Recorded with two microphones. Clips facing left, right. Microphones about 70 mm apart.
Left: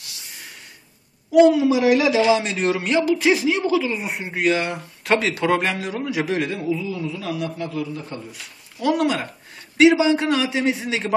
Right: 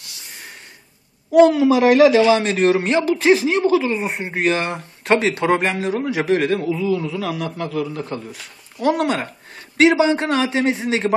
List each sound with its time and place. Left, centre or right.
1.3 s a woman's voice: right
2.0 s speech: centre
2.3 s speech: right
7.0 s a man's voice: right
8.3 s speech: right